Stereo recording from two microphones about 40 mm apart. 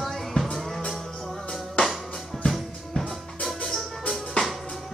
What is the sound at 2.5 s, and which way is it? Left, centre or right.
Music, centre.